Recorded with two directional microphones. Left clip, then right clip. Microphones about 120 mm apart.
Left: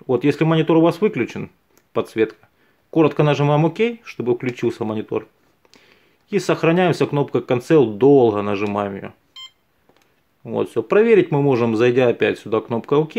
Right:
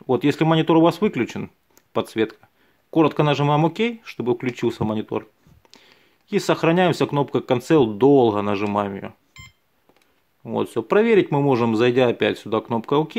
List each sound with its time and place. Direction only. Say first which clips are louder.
0.0 s speech: left 2 dB; 45° right (ahead or behind)
10.4 s speech: left 3 dB; 40° right (ahead or behind)